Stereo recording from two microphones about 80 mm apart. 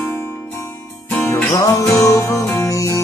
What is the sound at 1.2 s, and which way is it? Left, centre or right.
Music, left.